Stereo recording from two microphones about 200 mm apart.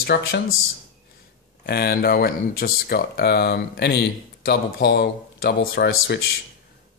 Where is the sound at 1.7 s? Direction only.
50° left (ahead or behind).